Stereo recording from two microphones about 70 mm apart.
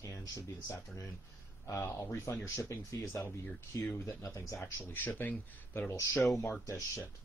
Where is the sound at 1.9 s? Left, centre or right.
Left.